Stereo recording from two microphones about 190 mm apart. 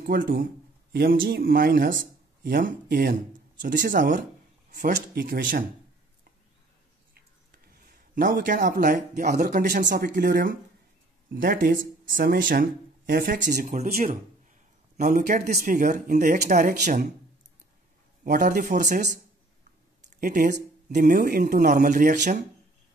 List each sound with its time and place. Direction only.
0.0 s a man's voice: 50° right (ahead or behind)
7.6 s a man's voice: 50° right (ahead or behind)
18.2 s a man's voice: 45° right (ahead or behind)
20.2 s a man's voice: 45° right (ahead or behind)